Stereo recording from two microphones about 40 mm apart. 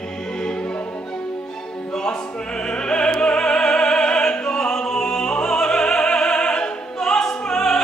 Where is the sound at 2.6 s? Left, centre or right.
Left.